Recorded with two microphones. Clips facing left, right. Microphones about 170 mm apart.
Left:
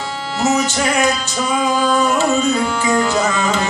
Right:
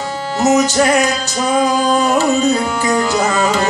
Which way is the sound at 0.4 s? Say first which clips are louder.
Right 5 dB; 45° right (ahead or behind).